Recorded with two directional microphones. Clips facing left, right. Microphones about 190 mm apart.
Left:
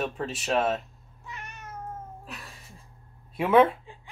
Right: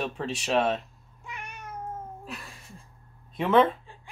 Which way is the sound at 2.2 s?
Centre (ahead or behind).